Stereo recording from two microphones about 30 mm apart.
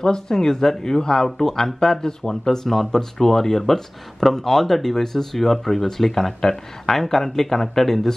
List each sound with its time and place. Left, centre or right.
0.0 s speech: left